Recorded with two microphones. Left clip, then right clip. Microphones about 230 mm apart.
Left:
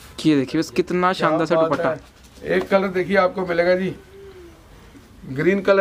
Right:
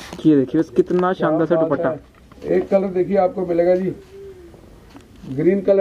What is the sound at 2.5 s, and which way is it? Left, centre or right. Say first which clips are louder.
Speech: right 1 dB; left.